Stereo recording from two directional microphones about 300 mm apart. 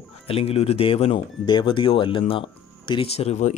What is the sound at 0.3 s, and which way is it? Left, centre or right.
Speech, centre.